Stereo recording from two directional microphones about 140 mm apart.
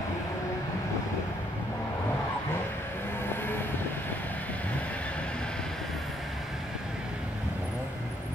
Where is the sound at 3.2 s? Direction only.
15° left (ahead or behind).